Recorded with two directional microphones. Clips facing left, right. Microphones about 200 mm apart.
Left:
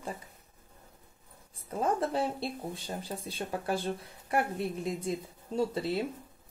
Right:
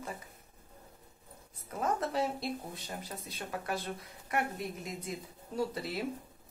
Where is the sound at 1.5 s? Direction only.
30° left (ahead or behind).